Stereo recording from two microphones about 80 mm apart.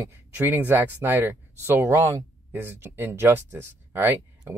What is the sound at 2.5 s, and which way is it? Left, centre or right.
Speech, right.